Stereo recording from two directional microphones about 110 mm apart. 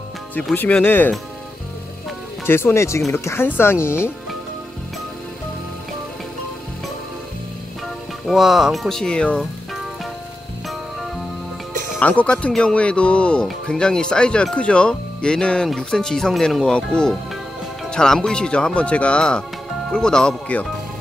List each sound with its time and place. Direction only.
0.6 s speech: 15° left (ahead or behind)
2.4 s speech: 20° left (ahead or behind)
8.3 s speech: 5° right (ahead or behind)
12.0 s speech: 15° left (ahead or behind)